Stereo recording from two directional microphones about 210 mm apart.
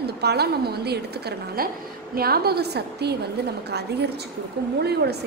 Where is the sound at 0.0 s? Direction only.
50° right (ahead or behind).